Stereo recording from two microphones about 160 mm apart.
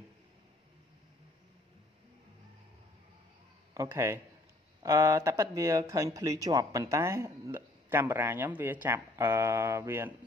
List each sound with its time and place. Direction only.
3.7 s speech: 20° right (ahead or behind)